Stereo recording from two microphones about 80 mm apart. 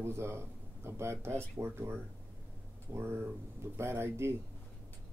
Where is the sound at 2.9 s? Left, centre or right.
Right.